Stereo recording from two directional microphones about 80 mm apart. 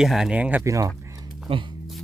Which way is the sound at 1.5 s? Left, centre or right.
Right.